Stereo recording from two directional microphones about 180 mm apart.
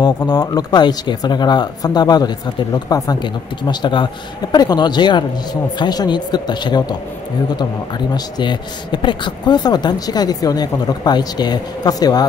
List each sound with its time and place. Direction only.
0.0 s speech: 20° left (ahead or behind)
8.1 s speech: 25° left (ahead or behind)